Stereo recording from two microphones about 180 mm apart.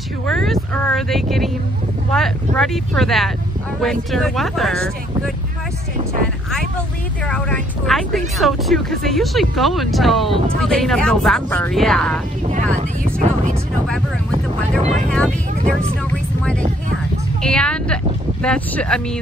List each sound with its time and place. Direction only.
0.3 s speech: centre (ahead or behind)
7.2 s speech: 5° left (ahead or behind)
12.4 s speech: 45° right (ahead or behind)
15.0 s speech: 5° left (ahead or behind)
17.4 s speech: 5° left (ahead or behind)